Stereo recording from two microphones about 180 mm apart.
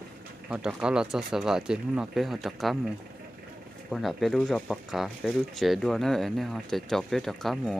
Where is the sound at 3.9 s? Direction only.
Centre (ahead or behind).